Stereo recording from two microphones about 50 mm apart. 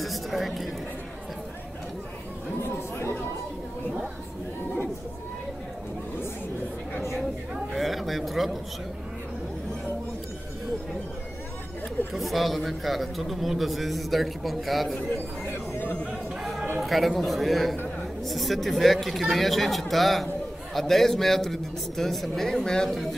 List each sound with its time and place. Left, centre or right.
0.0 s a sound: centre
2.6 s chatter: left
7.5 s a sound: centre
12.1 s a man's voice: centre
15.4 s speech: left
16.8 s a man's voice: centre